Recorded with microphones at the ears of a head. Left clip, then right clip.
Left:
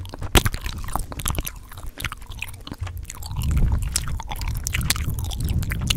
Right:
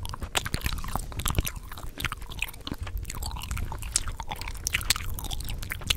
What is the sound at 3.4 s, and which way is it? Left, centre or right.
Chewing, left.